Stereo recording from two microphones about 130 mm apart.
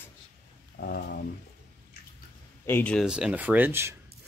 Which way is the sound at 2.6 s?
15° left (ahead or behind).